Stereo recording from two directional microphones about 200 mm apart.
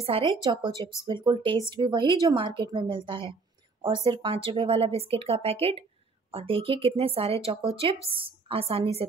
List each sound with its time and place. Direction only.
0.0 s speech: 25° right (ahead or behind)